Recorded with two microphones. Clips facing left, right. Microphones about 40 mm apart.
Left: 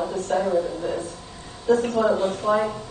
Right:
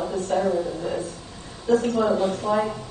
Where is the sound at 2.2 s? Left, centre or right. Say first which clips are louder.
Even; left.